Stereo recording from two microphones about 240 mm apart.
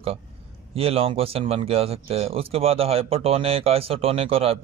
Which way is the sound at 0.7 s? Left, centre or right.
Right.